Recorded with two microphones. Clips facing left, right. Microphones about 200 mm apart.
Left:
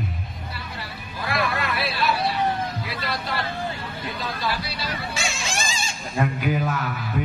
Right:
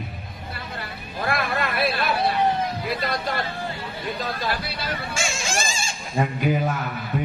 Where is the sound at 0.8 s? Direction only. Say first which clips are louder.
Right 4 dB; 50° right (ahead or behind).